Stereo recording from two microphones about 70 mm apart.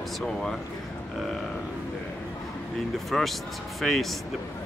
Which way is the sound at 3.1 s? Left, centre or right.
Centre.